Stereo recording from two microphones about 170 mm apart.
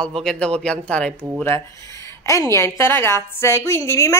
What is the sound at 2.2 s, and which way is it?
Speech, 20° left (ahead or behind).